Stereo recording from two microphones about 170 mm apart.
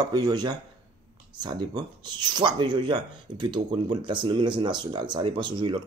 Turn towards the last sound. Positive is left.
turn(degrees=-25)  # may be behind; listen again after turning